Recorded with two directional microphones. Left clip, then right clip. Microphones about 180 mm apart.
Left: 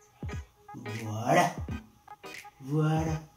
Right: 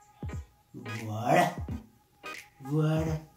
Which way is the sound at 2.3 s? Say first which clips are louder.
Right 1 dB; centre (ahead or behind).